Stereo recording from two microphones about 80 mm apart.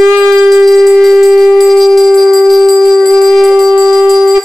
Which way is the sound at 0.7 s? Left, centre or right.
Centre.